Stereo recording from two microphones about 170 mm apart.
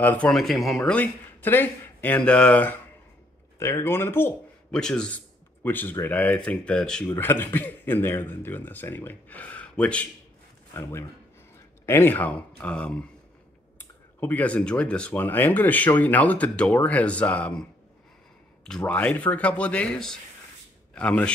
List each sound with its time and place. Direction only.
0.0 s speech: 10° left (ahead or behind)
18.7 s speech: 5° left (ahead or behind)